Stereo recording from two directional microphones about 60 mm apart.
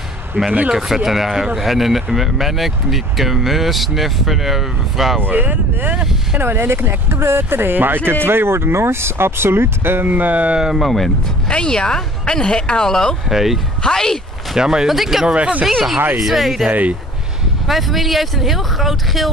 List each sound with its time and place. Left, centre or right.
0.5 s speech: centre
0.7 s speech: centre
5.2 s speech: right
10.6 s speech: centre
11.4 s speech: centre
13.3 s speech: centre
13.8 s speech: centre
14.5 s speech: centre
15.3 s speech: right
15.7 s speech: centre
16.6 s speech: right
17.6 s speech: centre